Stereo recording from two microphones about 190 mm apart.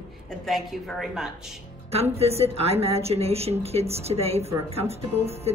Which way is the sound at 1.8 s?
30° right (ahead or behind).